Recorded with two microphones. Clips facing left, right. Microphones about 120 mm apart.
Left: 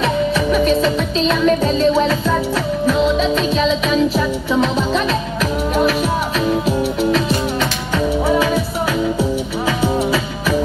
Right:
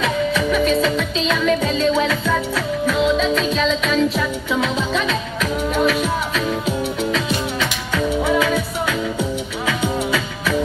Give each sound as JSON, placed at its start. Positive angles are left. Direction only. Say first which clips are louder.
{"t": 0.5, "sound": "music", "louder": "left 3 dB", "side_deg": 5}
{"t": 0.9, "sound": "music", "louder": "left 3 dB", "side_deg": 30}
{"t": 1.4, "sound": "music", "louder": "left 3 dB", "side_deg": 5}
{"t": 7.9, "sound": "music", "louder": "left 2 dB", "side_deg": 25}
{"t": 9.7, "sound": "music", "louder": "left 3 dB", "side_deg": 30}